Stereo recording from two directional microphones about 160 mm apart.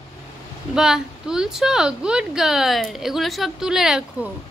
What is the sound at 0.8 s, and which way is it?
A woman's voice, 5° right (ahead or behind).